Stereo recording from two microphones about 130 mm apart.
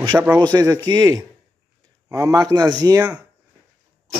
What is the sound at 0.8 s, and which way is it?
Speech, 30° right (ahead or behind).